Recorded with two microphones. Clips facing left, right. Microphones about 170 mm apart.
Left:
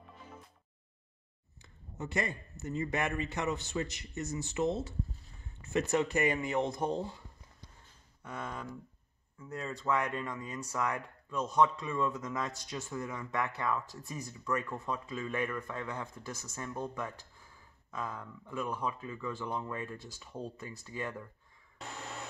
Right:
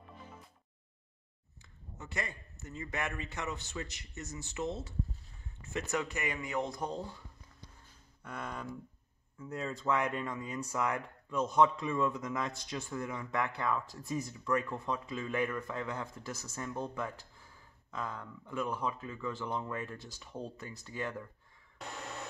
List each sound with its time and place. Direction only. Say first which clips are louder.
2.0 s a man's voice: left 6 dB; 25° left (ahead or behind)
5.9 s a man's voice: left 6 dB; 30° left (ahead or behind)
8.2 s speech: left 1 dB; centre (ahead or behind)